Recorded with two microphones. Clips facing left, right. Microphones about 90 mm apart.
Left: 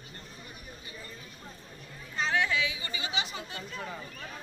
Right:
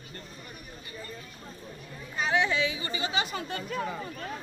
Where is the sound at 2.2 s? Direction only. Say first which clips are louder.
Right 2 dB; 20° right (ahead or behind); by 3.8 s 55° right (ahead or behind).